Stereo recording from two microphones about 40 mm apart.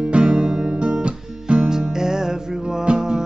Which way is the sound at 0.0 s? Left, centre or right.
Right.